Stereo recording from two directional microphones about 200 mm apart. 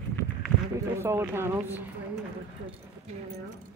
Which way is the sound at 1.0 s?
10° right (ahead or behind).